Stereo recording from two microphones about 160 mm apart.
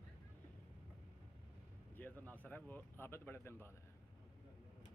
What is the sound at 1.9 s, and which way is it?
Speech, 10° left (ahead or behind).